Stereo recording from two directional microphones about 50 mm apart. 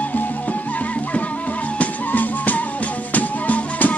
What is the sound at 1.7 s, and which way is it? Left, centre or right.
Music, left.